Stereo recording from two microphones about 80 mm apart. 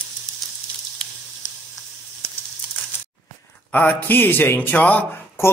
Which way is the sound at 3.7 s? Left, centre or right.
Left.